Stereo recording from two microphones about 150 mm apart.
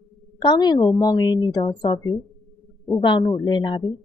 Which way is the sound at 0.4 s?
30° left (ahead or behind).